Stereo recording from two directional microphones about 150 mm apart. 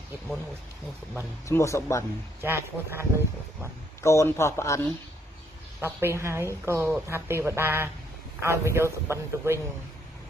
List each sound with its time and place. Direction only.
1.5 s a man's voice: 20° left (ahead or behind)
2.4 s a woman's voice: 15° right (ahead or behind)
4.0 s a man's voice: 20° left (ahead or behind)
5.8 s a woman's voice: 15° right (ahead or behind)